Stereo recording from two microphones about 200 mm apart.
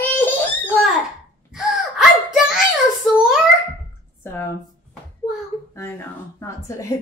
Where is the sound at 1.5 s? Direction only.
Centre (ahead or behind).